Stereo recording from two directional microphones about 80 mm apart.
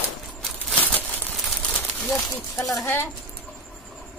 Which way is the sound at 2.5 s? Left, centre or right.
Centre.